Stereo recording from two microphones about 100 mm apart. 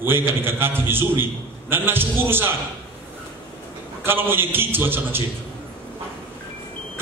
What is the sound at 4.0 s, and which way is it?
A man's voice, 20° right (ahead or behind).